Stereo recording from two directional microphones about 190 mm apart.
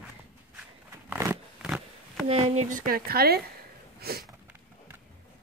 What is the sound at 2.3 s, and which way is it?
Speech, 35° right (ahead or behind).